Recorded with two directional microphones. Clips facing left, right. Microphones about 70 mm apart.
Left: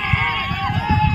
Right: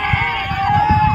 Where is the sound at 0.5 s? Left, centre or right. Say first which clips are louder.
Right 8 dB; right.